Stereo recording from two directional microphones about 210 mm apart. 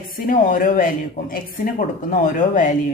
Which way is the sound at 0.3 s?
40° left (ahead or behind).